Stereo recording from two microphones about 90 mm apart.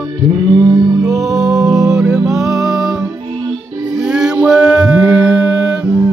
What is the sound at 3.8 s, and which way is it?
Mantra, 10° right (ahead or behind).